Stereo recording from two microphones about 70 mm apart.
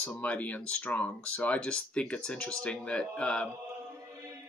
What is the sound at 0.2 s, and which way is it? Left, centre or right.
Speech, left.